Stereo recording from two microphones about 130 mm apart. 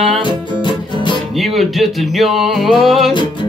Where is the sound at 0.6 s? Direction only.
35° left (ahead or behind).